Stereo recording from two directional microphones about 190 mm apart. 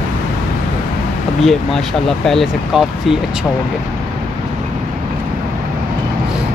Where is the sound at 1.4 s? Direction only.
Centre (ahead or behind).